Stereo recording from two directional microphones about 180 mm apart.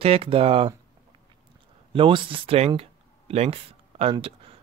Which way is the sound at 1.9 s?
30° right (ahead or behind).